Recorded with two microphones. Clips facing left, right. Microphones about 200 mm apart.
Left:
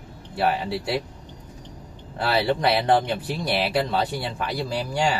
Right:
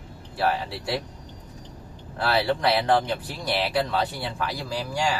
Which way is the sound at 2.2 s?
20° left (ahead or behind).